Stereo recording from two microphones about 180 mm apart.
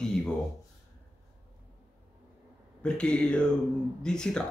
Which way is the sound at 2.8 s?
5° left (ahead or behind).